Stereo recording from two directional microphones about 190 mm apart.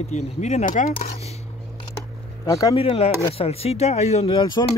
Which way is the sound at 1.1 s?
35° left (ahead or behind).